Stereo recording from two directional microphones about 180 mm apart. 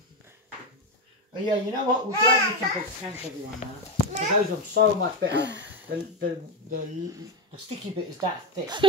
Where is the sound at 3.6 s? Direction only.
40° left (ahead or behind).